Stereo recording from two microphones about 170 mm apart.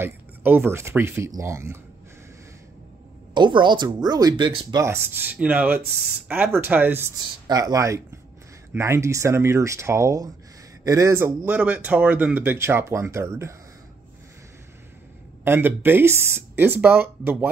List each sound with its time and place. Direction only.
0.0 s speech: 10° right (ahead or behind)
3.3 s speech: 25° right (ahead or behind)
15.4 s speech: 15° right (ahead or behind)